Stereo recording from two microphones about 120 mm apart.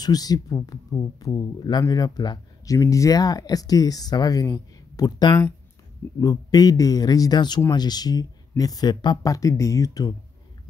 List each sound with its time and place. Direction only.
0.0 s speech: 35° left (ahead or behind)